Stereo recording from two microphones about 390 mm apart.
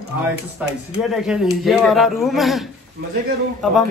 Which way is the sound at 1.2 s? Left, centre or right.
Centre.